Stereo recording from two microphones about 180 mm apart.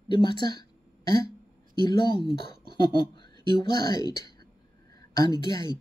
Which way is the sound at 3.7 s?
20° left (ahead or behind).